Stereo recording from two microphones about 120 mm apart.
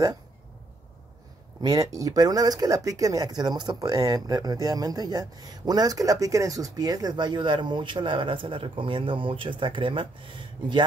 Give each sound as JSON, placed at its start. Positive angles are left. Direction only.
{"t": 1.6, "sound": "speech", "side_deg": -30}